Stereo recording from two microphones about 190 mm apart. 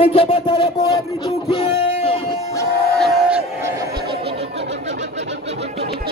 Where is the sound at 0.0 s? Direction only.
30° left (ahead or behind).